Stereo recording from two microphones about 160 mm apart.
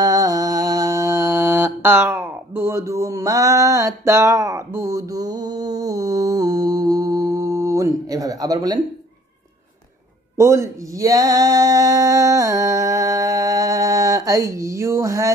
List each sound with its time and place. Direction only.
0.0 s mantra: 20° right (ahead or behind)
10.3 s male singing: 20° right (ahead or behind)